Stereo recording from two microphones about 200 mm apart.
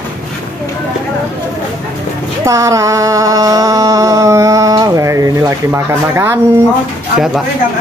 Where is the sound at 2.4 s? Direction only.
15° right (ahead or behind).